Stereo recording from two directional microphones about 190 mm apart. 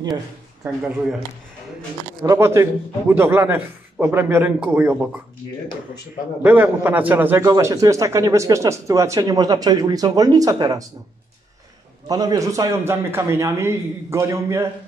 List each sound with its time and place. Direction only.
2.2 s a man's voice: 15° right (ahead or behind)
6.4 s a man's voice: 10° right (ahead or behind)
12.1 s a man's voice: 20° right (ahead or behind)